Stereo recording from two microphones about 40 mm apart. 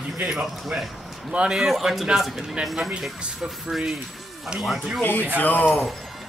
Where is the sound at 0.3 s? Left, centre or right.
Centre.